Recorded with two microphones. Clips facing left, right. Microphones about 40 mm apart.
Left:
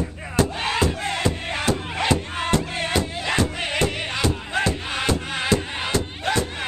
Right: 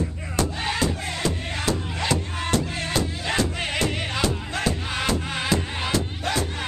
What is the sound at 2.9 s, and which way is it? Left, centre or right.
Music, centre.